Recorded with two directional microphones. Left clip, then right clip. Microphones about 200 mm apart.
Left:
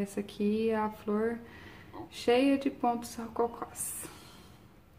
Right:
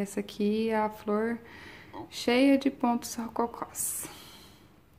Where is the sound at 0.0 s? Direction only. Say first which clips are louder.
Right 2 dB; 20° right (ahead or behind).